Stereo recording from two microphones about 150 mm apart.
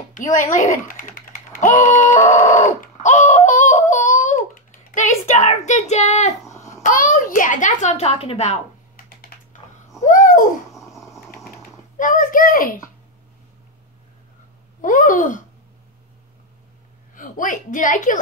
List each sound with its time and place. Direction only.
0.1 s speech: 60° left (ahead or behind)
0.8 s typing: 65° left (ahead or behind); by 6.3 s 50° left (ahead or behind)
6.8 s a child's voice: 65° left (ahead or behind); by 8.5 s 40° left (ahead or behind)
8.9 s computer keyboard: 70° left (ahead or behind)
10.0 s a sound: 60° left (ahead or behind)
12.0 s a child's voice: 60° left (ahead or behind)
14.8 s speech: 60° left (ahead or behind)
17.1 s a woman's voice: 60° left (ahead or behind)